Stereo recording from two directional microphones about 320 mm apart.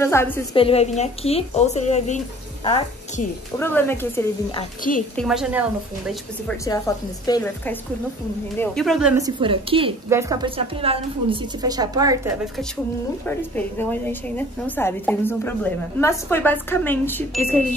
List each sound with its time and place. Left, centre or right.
0.0 s a woman's voice: centre
3.5 s a woman's voice: centre
6.4 s a woman's voice: centre
13.2 s a woman's voice: centre